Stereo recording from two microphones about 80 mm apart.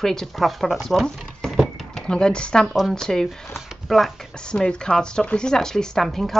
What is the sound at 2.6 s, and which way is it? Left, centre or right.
Speech, centre.